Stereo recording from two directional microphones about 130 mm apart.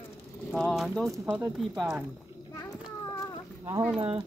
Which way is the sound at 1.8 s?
Centre (ahead or behind).